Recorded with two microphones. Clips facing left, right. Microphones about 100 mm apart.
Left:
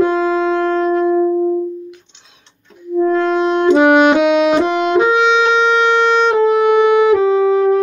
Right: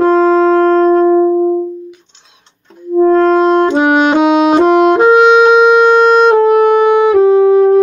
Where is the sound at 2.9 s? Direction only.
40° right (ahead or behind).